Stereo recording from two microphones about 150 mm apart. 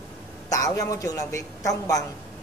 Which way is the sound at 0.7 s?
20° left (ahead or behind).